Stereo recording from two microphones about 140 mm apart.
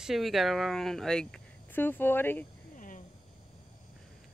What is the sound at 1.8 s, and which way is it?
Speech, 15° left (ahead or behind).